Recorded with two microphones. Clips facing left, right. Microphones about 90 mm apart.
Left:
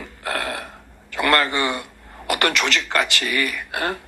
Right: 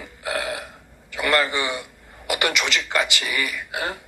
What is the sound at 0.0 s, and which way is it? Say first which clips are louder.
Burping: left 1 dB; 45° left (ahead or behind).